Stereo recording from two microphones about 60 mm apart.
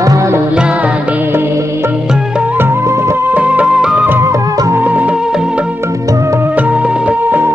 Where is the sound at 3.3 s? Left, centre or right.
Right.